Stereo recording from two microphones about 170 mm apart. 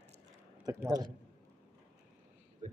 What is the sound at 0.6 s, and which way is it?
Speech, 20° right (ahead or behind).